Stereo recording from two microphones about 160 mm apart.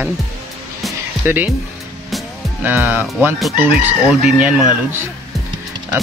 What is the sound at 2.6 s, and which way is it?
Speech, 10° right (ahead or behind).